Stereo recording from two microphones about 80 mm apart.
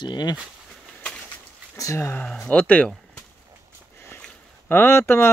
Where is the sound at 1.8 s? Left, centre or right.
Left.